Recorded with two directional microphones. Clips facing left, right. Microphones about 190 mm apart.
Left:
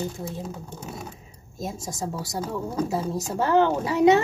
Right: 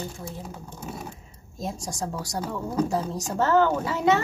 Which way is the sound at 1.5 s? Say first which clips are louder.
Even; 5° left (ahead or behind).